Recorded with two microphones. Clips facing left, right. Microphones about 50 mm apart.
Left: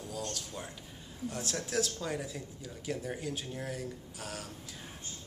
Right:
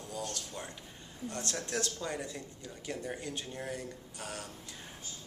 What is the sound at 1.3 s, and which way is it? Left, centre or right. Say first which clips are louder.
A man's voice: left 2 dB; centre.